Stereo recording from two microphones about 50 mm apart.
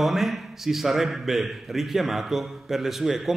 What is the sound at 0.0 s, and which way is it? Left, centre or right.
A man's voice, centre.